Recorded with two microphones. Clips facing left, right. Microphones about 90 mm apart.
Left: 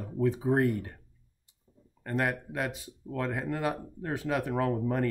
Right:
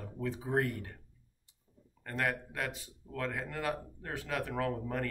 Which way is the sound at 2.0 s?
20° left (ahead or behind).